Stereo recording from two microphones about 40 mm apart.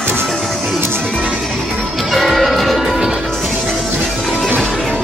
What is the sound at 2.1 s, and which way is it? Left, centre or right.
Music, centre.